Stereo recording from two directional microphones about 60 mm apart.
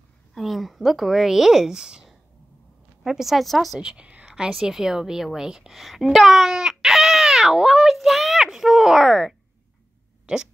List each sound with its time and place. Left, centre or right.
0.3 s speech: centre
3.8 s a woman's voice: centre